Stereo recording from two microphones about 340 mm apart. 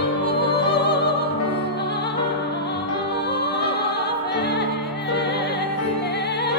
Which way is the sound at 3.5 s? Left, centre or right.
Left.